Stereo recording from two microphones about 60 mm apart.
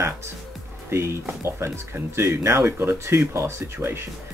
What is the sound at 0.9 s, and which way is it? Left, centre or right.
Speech, right.